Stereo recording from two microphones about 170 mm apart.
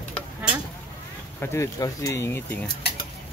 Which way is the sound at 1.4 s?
15° left (ahead or behind).